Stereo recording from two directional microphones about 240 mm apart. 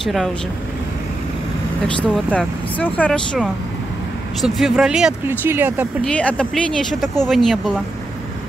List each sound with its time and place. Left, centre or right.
0.0 s speech: centre
2.3 s speech: centre
6.0 s speech: centre